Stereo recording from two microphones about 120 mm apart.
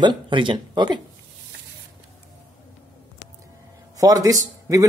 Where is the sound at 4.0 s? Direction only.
30° right (ahead or behind).